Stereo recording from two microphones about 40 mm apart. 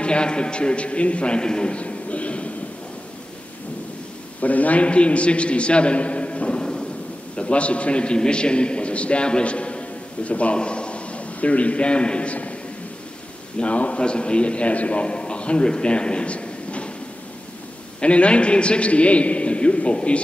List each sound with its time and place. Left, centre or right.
0.0 s a man's voice: left
4.4 s a man's voice: left
6.6 s thunder: centre
7.3 s a man's voice: left
13.6 s a man's voice: left
18.0 s a man's voice: left